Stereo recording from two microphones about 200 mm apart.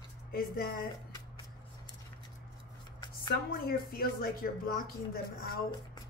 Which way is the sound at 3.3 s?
45° left (ahead or behind).